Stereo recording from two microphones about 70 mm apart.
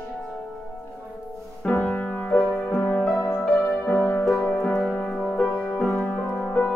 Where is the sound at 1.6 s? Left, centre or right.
Centre.